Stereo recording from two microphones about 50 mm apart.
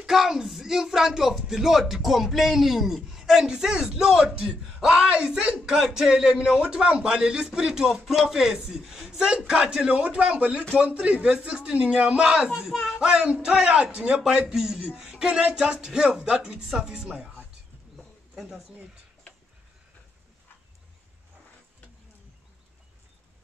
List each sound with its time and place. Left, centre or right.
0.0 s a man's voice: centre